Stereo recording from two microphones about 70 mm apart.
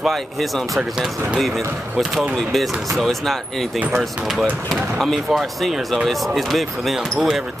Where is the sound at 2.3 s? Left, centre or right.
Centre.